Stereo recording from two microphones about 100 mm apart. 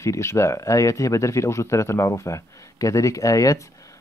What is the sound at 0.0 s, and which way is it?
Speech, 30° left (ahead or behind).